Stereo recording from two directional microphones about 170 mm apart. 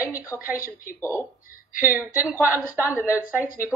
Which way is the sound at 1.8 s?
10° right (ahead or behind).